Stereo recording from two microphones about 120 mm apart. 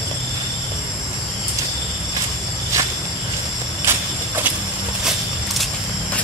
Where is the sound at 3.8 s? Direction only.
20° right (ahead or behind).